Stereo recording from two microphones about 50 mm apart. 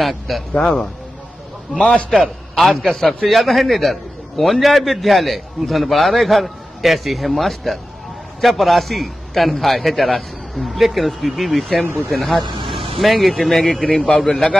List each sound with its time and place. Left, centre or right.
0.0 s a man's voice: centre
0.6 s speech: centre
2.1 s a man's voice: centre